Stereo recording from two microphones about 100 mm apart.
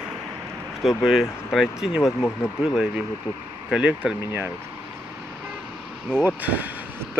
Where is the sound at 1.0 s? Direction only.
Centre (ahead or behind).